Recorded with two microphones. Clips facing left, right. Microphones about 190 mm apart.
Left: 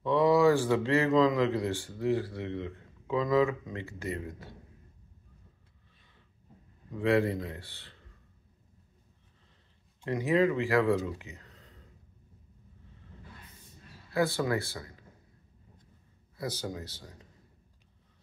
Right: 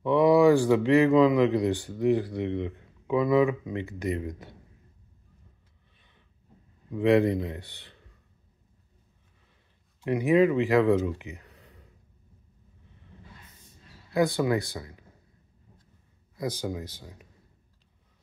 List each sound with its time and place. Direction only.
0.0 s a man's voice: 15° right (ahead or behind)
6.9 s a man's voice: 20° right (ahead or behind)
10.0 s a man's voice: 15° right (ahead or behind)
14.1 s a man's voice: 15° right (ahead or behind)
16.3 s a man's voice: 15° right (ahead or behind)